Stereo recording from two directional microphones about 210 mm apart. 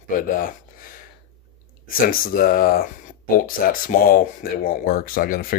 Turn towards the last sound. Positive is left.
turn(degrees=45)  # may be behind; listen again after turning